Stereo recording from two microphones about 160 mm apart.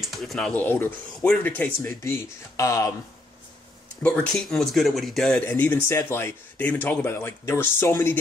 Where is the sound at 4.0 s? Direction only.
5° left (ahead or behind).